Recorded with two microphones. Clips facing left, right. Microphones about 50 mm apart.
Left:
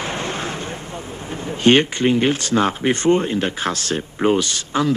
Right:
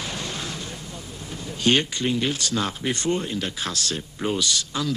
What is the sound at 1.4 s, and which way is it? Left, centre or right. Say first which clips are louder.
Speech: left 7 dB; left.